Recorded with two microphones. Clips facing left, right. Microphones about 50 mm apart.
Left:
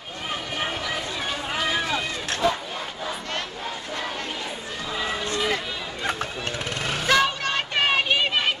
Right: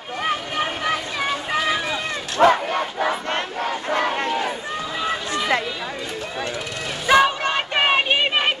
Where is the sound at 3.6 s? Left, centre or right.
Right.